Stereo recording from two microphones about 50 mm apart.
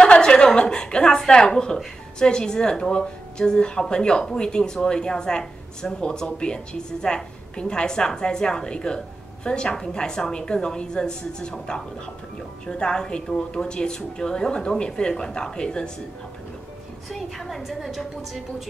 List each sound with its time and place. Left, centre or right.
0.0 s speech: centre
17.1 s a woman's voice: centre